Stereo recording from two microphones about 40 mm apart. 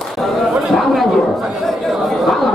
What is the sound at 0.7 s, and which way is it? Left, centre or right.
Speech, centre.